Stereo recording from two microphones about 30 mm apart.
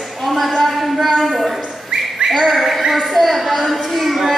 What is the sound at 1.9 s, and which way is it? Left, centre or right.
Bird, right.